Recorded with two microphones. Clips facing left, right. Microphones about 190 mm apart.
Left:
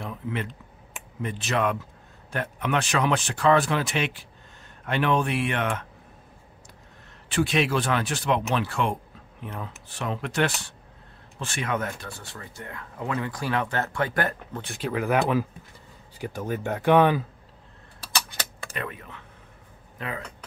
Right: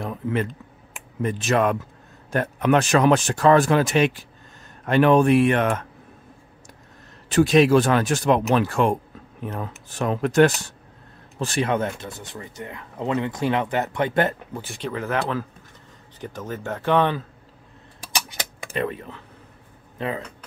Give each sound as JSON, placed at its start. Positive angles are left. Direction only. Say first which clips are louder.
{"t": 0.0, "sound": "a sound", "louder": "right 6 dB", "side_deg": -45}
{"t": 1.2, "sound": "speech", "louder": "right 5 dB", "side_deg": -45}
{"t": 7.2, "sound": "speech", "louder": "right 8 dB", "side_deg": -40}
{"t": 14.5, "sound": "speech", "louder": "even", "side_deg": 0}
{"t": 18.0, "sound": "a sound", "louder": "right 1 dB", "side_deg": -15}
{"t": 18.7, "sound": "speech", "louder": "right 12 dB", "side_deg": -30}